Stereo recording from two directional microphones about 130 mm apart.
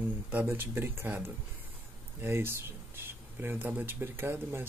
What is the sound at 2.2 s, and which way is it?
Speech, 20° right (ahead or behind).